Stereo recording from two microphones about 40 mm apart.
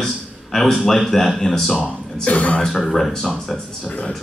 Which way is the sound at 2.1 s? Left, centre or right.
Left.